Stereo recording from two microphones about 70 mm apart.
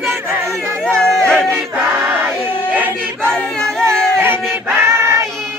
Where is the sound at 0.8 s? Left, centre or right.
Centre.